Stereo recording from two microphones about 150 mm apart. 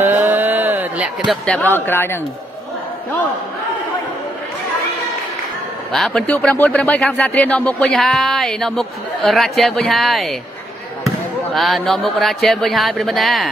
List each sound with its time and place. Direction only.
0.0 s a sound: 15° right (ahead or behind)
1.3 s speech: 5° left (ahead or behind)
1.7 s speech: 15° left (ahead or behind)
5.9 s speech: 5° left (ahead or behind)
11.5 s speech: centre (ahead or behind)